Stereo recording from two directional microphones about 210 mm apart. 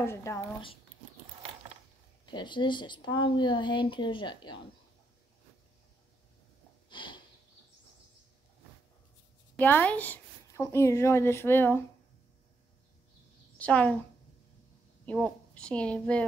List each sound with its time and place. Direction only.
0.0 s a woman's voice: 15° left (ahead or behind)
2.2 s a woman's voice: 20° left (ahead or behind)
6.9 s sniff: 20° left (ahead or behind)
9.6 s a woman's voice: 10° left (ahead or behind)
13.6 s a woman's voice: 5° left (ahead or behind)
15.0 s a woman's voice: 5° left (ahead or behind)